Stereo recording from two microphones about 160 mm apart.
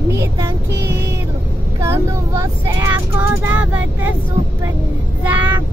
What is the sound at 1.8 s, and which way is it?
Speech, 20° right (ahead or behind).